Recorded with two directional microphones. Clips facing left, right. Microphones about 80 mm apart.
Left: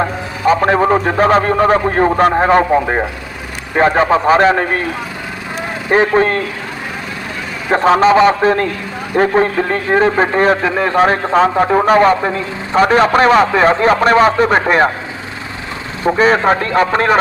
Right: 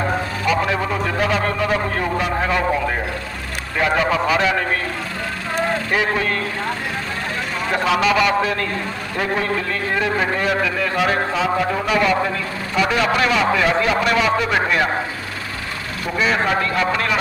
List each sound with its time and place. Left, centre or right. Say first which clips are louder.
0.5 s a man's voice: left 10 dB; left
5.9 s a man's voice: left 8 dB; left
7.7 s a man's voice: left 9 dB; left
16.0 s a man's voice: left 8 dB; left